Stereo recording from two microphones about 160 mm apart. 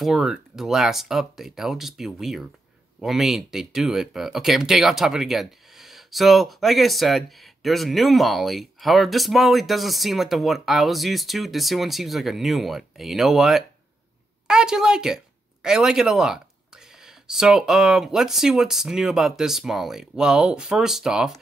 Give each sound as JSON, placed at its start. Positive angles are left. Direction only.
{"t": 0.0, "sound": "speech", "side_deg": 0}